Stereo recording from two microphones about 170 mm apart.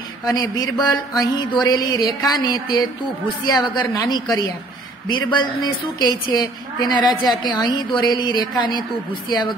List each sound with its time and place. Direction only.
0.2 s a woman's voice: 20° left (ahead or behind)
3.8 s a woman's voice: 20° left (ahead or behind)